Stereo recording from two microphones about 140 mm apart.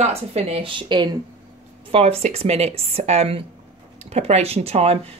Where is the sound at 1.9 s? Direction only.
45° right (ahead or behind).